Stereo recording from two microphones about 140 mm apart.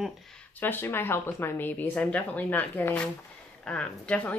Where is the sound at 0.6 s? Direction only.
15° left (ahead or behind).